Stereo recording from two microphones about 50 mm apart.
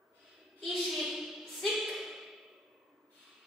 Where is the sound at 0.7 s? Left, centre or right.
Centre.